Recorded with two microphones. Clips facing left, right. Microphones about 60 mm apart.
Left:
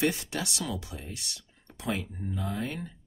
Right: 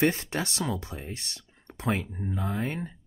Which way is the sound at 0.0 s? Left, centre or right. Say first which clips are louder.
Right 3 dB; right.